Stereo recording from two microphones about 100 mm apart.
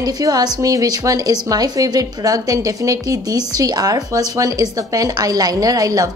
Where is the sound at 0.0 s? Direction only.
40° right (ahead or behind).